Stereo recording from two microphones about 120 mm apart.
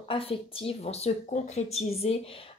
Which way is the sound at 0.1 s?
50° left (ahead or behind).